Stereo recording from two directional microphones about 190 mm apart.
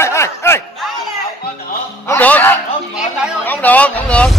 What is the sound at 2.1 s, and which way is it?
Speech, 10° left (ahead or behind).